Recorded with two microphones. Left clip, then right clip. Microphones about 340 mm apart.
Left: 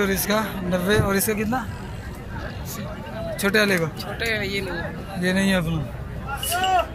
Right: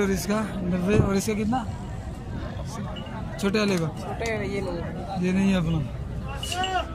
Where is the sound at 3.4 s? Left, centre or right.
Centre.